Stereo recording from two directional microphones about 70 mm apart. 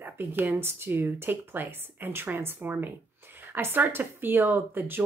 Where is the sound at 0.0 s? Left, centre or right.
Right.